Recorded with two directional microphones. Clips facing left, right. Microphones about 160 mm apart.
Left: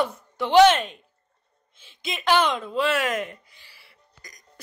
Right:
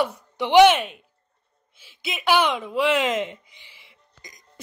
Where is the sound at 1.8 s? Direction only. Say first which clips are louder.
Even; 10° right (ahead or behind).